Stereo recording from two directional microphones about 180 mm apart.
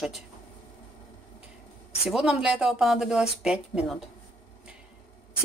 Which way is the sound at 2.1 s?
5° right (ahead or behind).